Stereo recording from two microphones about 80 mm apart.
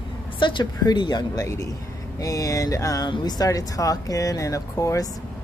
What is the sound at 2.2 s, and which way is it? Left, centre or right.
Speech, left.